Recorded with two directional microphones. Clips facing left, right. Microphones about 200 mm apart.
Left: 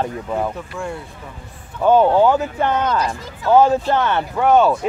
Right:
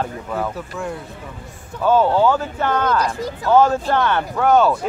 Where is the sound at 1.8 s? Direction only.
15° left (ahead or behind).